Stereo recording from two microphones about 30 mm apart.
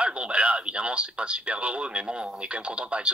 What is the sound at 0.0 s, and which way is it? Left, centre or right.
Speech, right.